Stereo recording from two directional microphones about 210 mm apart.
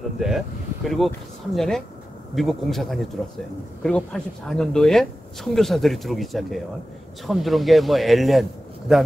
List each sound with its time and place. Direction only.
0.8 s speech: centre (ahead or behind)